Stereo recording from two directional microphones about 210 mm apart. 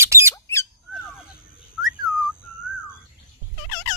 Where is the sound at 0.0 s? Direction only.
15° right (ahead or behind).